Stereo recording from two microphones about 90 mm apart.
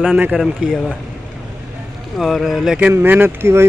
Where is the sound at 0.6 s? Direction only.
10° right (ahead or behind).